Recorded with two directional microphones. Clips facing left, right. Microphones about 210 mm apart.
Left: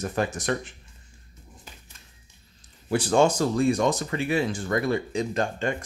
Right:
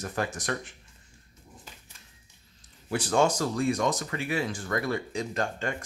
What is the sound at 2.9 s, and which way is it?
Speech, 30° left (ahead or behind).